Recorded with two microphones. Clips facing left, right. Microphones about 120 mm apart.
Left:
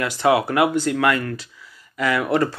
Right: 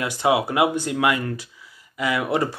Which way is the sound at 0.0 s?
15° right (ahead or behind).